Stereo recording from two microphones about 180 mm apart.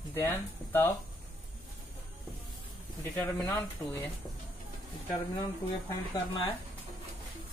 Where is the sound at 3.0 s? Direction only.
10° left (ahead or behind).